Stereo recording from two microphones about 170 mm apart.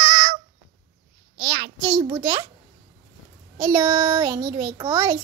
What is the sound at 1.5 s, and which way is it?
Speech, 25° right (ahead or behind).